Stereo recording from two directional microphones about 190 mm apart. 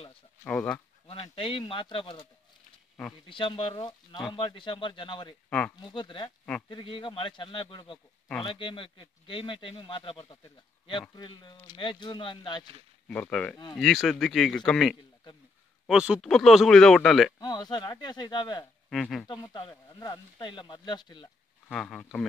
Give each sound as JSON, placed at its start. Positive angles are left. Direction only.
{"t": 0.4, "sound": "speech", "side_deg": 5}
{"t": 1.0, "sound": "speech", "side_deg": 30}
{"t": 3.3, "sound": "speech", "side_deg": 25}
{"t": 5.5, "sound": "speech", "side_deg": 5}
{"t": 5.8, "sound": "speech", "side_deg": 25}
{"t": 13.1, "sound": "speech", "side_deg": 5}
{"t": 17.4, "sound": "speech", "side_deg": 20}
{"t": 18.9, "sound": "speech", "side_deg": 0}
{"t": 19.2, "sound": "speech", "side_deg": 25}
{"t": 21.6, "sound": "speech", "side_deg": 5}